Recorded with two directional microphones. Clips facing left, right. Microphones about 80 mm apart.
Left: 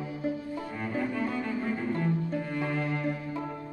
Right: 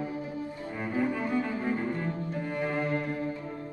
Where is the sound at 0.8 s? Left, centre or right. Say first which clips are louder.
Right 2 dB; centre.